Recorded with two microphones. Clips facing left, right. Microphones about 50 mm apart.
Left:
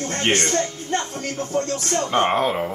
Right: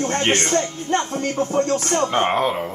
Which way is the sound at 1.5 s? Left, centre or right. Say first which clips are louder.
Right 3 dB; right.